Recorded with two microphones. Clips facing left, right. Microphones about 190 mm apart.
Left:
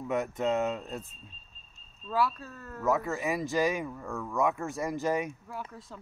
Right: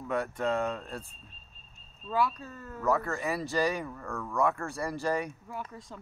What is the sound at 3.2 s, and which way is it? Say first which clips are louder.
Speech: left 1 dB; 15° left (ahead or behind).